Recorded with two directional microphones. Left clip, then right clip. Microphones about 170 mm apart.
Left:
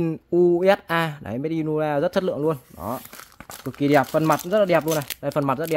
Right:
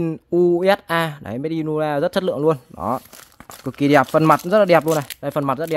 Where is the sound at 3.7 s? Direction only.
35° right (ahead or behind).